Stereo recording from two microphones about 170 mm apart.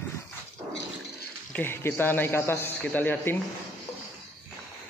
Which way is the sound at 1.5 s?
10° left (ahead or behind).